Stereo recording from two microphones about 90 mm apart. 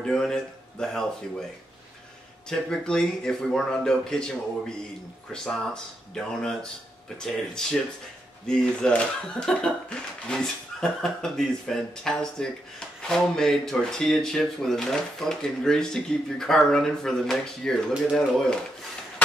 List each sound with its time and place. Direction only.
0.0 s speech: 5° left (ahead or behind)
2.5 s speech: 5° left (ahead or behind)